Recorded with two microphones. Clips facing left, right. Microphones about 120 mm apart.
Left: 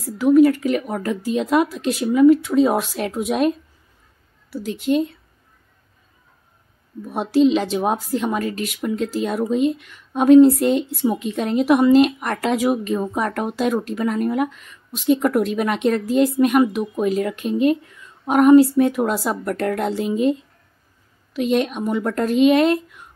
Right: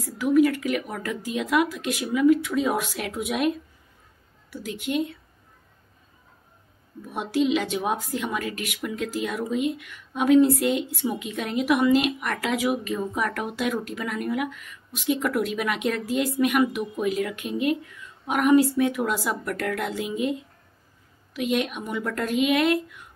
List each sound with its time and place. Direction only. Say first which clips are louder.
0.2 s a woman's voice: left 6 dB; 35° left (ahead or behind)
7.1 s a woman's voice: left 7 dB; 35° left (ahead or behind)
21.4 s a woman's voice: left 6 dB; 35° left (ahead or behind)